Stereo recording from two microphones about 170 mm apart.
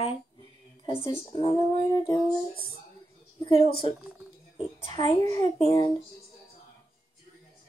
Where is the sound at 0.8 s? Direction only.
35° left (ahead or behind).